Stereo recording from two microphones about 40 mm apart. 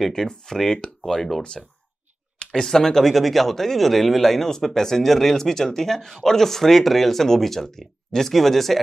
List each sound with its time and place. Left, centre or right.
0.1 s speech: centre
1.0 s speech: centre
2.3 s clicking: left
2.6 s speech: centre